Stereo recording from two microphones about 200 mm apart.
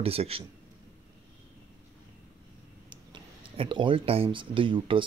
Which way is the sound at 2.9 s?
25° right (ahead or behind).